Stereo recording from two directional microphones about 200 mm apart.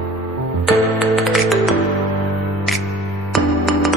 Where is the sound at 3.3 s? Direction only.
Centre (ahead or behind).